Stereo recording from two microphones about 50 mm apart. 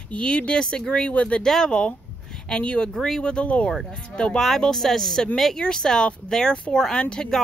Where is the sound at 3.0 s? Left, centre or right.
Centre.